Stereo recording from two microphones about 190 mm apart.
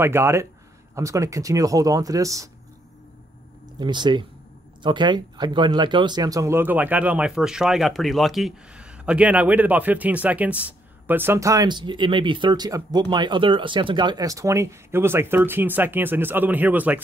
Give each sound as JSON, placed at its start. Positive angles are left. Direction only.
{"t": 0.0, "sound": "speech", "side_deg": -15}
{"t": 3.8, "sound": "speech", "side_deg": -25}